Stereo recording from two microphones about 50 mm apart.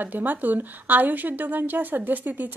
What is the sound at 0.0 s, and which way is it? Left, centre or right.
A woman's voice, right.